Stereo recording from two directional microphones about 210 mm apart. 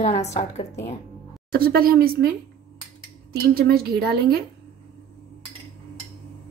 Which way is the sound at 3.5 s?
45° right (ahead or behind).